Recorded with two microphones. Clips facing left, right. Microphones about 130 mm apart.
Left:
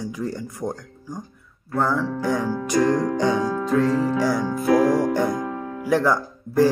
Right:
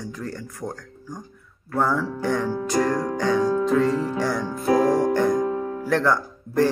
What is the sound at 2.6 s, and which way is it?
Music, 20° left (ahead or behind).